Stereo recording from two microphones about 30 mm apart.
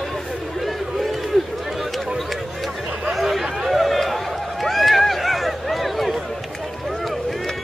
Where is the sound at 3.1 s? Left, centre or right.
Centre.